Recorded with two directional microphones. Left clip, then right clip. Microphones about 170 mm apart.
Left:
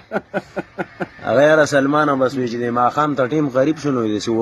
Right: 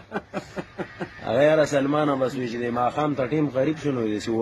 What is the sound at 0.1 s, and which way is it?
Speech, 40° left (ahead or behind).